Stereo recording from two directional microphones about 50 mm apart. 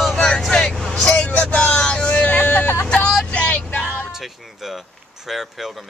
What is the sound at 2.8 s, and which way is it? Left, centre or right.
Vehicle, centre.